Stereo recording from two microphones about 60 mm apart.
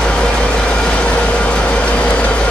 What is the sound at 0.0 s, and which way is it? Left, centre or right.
Vehicle, centre.